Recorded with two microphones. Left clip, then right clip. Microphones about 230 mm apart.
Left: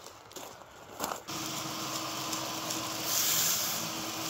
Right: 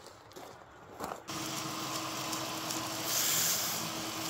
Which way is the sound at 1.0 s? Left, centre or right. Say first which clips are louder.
Left 4 dB; left.